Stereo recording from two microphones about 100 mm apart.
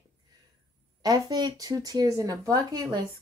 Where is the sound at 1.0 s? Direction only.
40° right (ahead or behind).